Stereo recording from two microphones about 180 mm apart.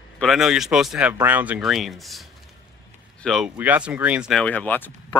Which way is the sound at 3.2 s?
Centre (ahead or behind).